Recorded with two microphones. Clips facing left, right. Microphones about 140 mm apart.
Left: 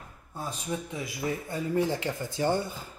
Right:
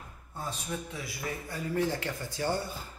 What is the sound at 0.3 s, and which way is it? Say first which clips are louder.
Speech: left 3 dB; 10° left (ahead or behind).